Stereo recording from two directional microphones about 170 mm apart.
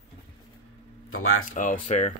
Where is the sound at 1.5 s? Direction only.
50° left (ahead or behind).